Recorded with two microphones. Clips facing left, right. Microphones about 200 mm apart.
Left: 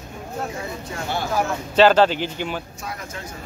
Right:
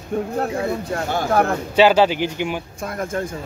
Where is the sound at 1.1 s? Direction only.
50° right (ahead or behind).